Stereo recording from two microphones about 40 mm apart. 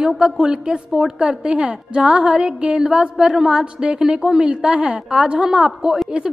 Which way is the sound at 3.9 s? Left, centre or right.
Centre.